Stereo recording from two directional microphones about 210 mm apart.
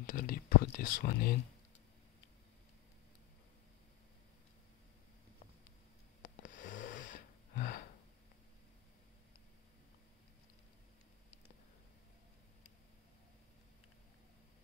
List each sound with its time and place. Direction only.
0.0 s speech: 40° left (ahead or behind)
6.2 s wheeze: 35° left (ahead or behind)